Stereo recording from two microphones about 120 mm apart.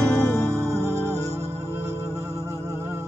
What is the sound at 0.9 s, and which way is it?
Music, 20° right (ahead or behind).